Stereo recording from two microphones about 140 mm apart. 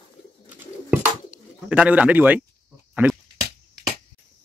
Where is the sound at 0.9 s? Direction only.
10° right (ahead or behind).